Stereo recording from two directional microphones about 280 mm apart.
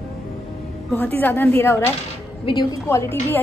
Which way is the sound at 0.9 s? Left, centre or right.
Centre.